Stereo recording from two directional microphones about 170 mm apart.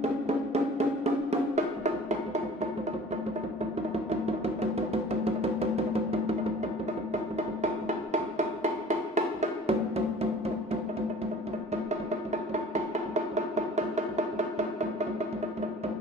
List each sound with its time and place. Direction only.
4.1 s music: 35° right (ahead or behind)
7.3 s music: 45° right (ahead or behind)
13.1 s music: 40° right (ahead or behind)